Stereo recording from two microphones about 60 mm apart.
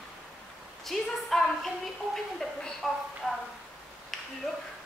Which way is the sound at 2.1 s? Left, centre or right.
Centre.